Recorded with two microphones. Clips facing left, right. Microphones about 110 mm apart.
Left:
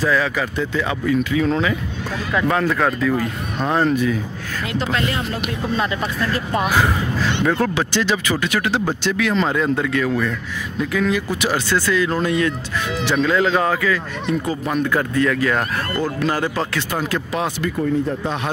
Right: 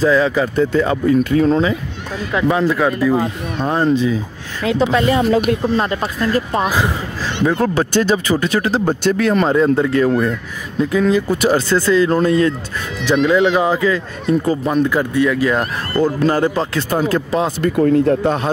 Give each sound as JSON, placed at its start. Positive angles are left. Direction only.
{"t": 0.0, "sound": "speech", "side_deg": -30}
{"t": 2.3, "sound": "speech", "side_deg": -15}
{"t": 3.5, "sound": "speech", "side_deg": -5}
{"t": 3.8, "sound": "speech", "side_deg": -25}
{"t": 5.4, "sound": "speech", "side_deg": -45}
{"t": 7.4, "sound": "speech", "side_deg": -20}
{"t": 7.7, "sound": "speech", "side_deg": -45}
{"t": 9.5, "sound": "speech", "side_deg": -30}
{"t": 14.9, "sound": "speech", "side_deg": -15}
{"t": 16.0, "sound": "speech", "side_deg": -40}
{"t": 17.7, "sound": "speech", "side_deg": -70}